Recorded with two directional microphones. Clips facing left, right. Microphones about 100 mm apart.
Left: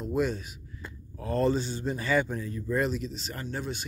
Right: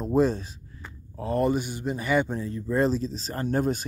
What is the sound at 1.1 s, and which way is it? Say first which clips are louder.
Speech: right 2 dB; 20° right (ahead or behind).